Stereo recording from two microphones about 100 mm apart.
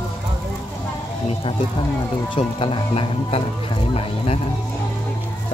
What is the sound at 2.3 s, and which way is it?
Speech, 60° left (ahead or behind).